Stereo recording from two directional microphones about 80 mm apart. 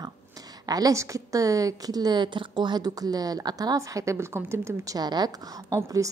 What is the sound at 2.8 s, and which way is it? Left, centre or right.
A woman's voice, right.